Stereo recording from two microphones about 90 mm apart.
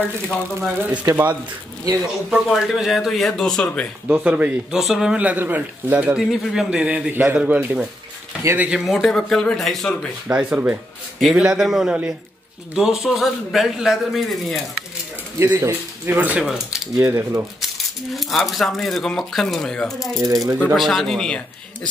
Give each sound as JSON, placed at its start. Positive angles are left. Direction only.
{"t": 1.1, "sound": "a man's voice", "side_deg": -15}
{"t": 2.3, "sound": "speech", "side_deg": 0}
{"t": 4.1, "sound": "speech", "side_deg": -20}
{"t": 4.6, "sound": "speech", "side_deg": -5}
{"t": 5.2, "sound": "a man's voice", "side_deg": -20}
{"t": 6.3, "sound": "speech", "side_deg": -5}
{"t": 7.1, "sound": "a man's voice", "side_deg": -20}
{"t": 10.2, "sound": "a man's voice", "side_deg": -15}
{"t": 15.3, "sound": "speech", "side_deg": -30}
{"t": 16.4, "sound": "speech", "side_deg": -5}
{"t": 16.9, "sound": "speech", "side_deg": -35}
{"t": 18.1, "sound": "speech", "side_deg": 0}
{"t": 20.2, "sound": "speech", "side_deg": -40}
{"t": 20.7, "sound": "speech", "side_deg": 0}